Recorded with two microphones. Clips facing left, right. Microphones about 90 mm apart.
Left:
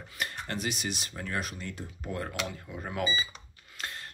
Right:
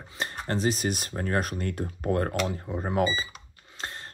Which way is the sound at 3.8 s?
30° right (ahead or behind).